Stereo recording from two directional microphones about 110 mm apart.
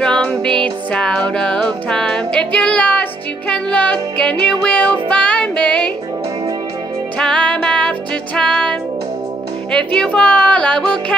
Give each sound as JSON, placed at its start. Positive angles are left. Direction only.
{"t": 0.0, "sound": "music", "side_deg": 10}
{"t": 7.2, "sound": "music", "side_deg": 5}
{"t": 9.9, "sound": "music", "side_deg": 10}